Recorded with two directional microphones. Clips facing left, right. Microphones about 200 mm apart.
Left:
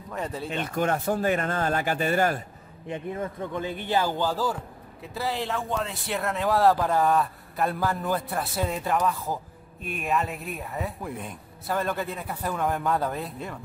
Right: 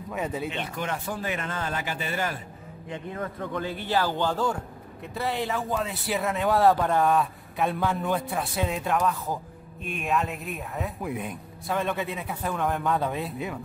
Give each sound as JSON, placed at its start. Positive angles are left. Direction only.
{"t": 0.1, "sound": "speech", "side_deg": -5}
{"t": 0.7, "sound": "speech", "side_deg": 45}
{"t": 2.9, "sound": "a man's voice", "side_deg": 25}
{"t": 3.9, "sound": "speech", "side_deg": 10}